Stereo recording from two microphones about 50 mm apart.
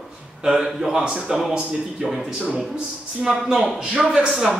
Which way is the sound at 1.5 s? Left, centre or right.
Centre.